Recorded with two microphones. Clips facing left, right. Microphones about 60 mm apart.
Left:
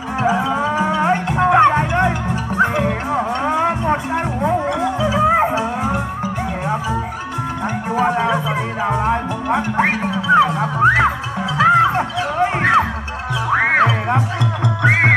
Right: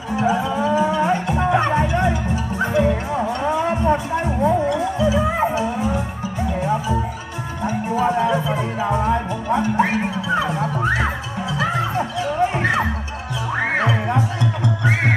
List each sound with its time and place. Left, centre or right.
0.2 s music: left
6.6 s a sound: left
7.6 s music: left